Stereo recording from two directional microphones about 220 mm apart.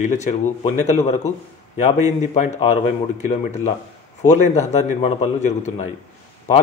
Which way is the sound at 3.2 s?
30° left (ahead or behind).